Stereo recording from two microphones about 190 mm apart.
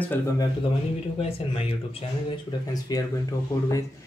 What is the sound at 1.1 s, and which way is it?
Speech, 30° left (ahead or behind).